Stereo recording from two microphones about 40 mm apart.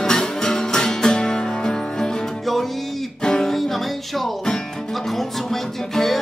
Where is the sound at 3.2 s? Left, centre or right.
Centre.